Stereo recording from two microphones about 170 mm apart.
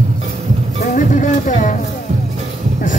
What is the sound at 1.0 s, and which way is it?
Music, 50° left (ahead or behind).